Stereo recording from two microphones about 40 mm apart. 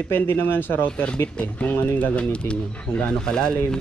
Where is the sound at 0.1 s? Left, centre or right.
Left.